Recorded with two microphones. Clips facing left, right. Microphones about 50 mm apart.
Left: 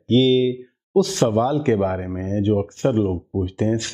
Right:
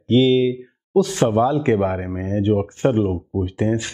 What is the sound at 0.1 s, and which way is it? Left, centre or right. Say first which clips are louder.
A man's voice: right 1 dB; centre.